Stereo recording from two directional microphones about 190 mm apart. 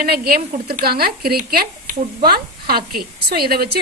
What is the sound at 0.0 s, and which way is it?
A woman's voice, 50° right (ahead or behind).